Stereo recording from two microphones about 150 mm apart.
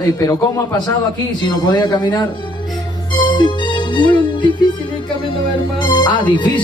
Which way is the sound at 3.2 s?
30° left (ahead or behind).